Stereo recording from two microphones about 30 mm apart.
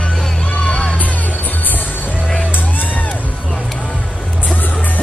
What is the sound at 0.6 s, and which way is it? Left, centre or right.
Music, left.